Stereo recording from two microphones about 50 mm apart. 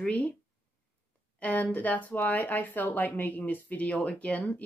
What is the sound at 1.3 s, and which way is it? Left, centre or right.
Speech, left.